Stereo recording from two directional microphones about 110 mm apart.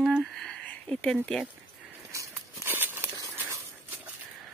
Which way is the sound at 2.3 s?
20° right (ahead or behind).